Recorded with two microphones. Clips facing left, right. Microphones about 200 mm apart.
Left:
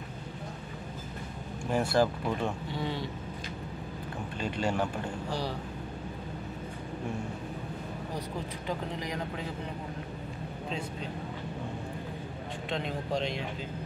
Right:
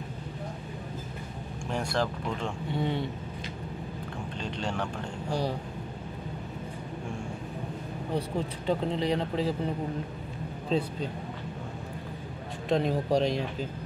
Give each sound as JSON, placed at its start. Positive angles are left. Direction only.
{"t": 1.7, "sound": "speech", "side_deg": 5}
{"t": 2.7, "sound": "speech", "side_deg": -20}
{"t": 4.4, "sound": "speech", "side_deg": 5}
{"t": 8.6, "sound": "speech", "side_deg": -30}
{"t": 12.6, "sound": "speech", "side_deg": -40}